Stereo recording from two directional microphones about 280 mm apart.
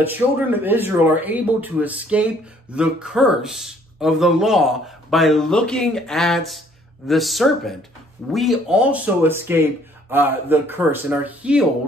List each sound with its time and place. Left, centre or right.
0.0 s speech: centre